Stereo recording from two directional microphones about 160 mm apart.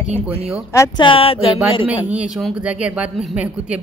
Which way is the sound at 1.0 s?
35° left (ahead or behind).